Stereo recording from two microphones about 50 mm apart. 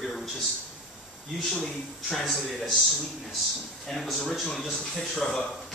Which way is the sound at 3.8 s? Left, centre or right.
Centre.